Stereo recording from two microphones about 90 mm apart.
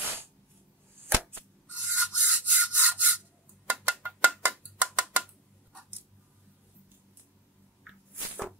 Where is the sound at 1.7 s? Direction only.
10° right (ahead or behind).